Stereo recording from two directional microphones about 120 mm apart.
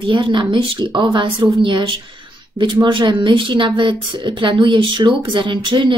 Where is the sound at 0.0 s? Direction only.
45° right (ahead or behind).